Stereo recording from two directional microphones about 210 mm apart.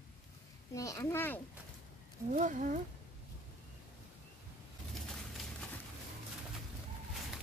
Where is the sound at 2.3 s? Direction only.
40° right (ahead or behind).